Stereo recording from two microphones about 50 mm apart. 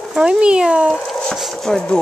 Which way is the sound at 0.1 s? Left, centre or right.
Centre.